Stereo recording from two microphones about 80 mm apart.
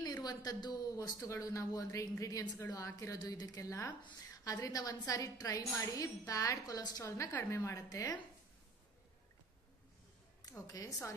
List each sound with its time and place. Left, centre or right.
0.0 s a woman's voice: left
10.4 s a woman's voice: left